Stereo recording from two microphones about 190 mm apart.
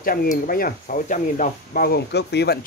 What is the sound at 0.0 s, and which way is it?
Speech, 50° left (ahead or behind).